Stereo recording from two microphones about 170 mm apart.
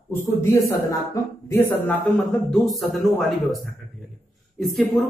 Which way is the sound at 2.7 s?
Centre (ahead or behind).